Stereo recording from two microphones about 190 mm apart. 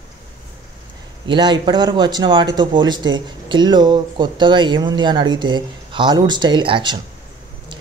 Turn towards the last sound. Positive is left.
turn(degrees=-25)  # may be behind; listen again after turning